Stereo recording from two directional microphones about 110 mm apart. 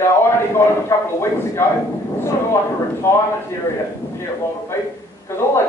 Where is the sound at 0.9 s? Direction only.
25° left (ahead or behind).